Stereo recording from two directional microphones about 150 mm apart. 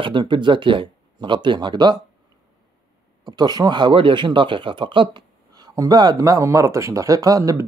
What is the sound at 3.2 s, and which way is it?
Speech, 25° right (ahead or behind).